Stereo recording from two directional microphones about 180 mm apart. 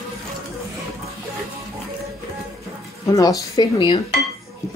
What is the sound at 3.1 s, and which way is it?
Speech, 20° left (ahead or behind).